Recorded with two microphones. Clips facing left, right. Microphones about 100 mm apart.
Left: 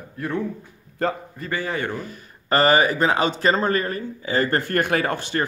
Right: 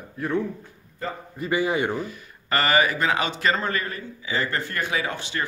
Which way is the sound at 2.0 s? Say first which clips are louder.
Right 3 dB; 40° left (ahead or behind).